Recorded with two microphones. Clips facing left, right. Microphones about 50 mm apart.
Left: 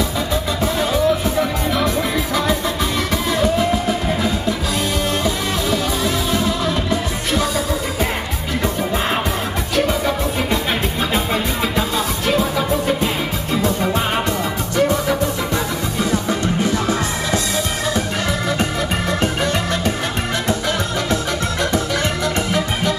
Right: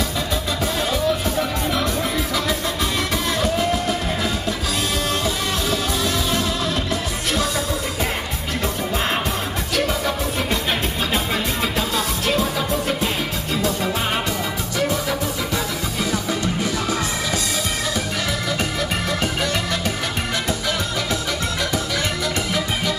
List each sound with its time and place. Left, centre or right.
0.7 s music: centre
3.5 s music: centre
9.8 s music: centre
12.3 s music: centre
16.1 s music: left
18.6 s organ: centre